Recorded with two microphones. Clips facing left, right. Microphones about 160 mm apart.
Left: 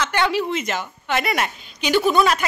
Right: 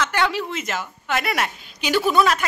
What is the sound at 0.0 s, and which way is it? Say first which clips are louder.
A woman's voice: left 2 dB; centre (ahead or behind).